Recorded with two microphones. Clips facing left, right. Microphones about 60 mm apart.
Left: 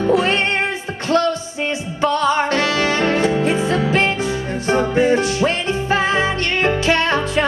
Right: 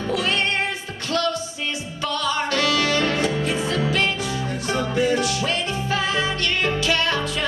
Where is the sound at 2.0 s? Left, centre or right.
Left.